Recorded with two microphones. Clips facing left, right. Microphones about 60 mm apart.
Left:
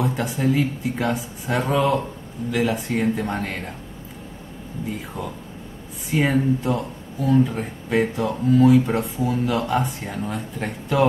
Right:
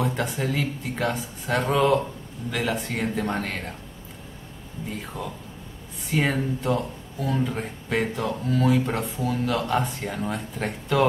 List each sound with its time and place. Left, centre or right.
0.0 s speech: centre
6.0 s speech: centre